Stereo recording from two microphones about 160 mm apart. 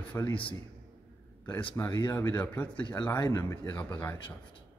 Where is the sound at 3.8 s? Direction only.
10° left (ahead or behind).